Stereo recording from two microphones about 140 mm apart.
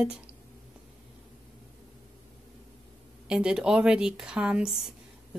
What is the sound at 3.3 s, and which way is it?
Speech, 5° right (ahead or behind).